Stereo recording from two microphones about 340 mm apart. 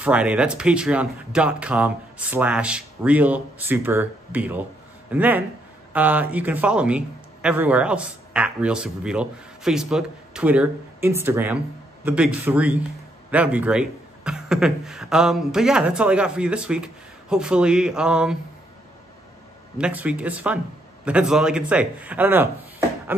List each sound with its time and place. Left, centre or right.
0.0 s a man's voice: centre
19.8 s a man's voice: centre